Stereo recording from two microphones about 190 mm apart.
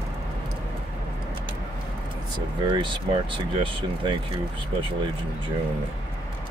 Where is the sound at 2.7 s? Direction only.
25° right (ahead or behind).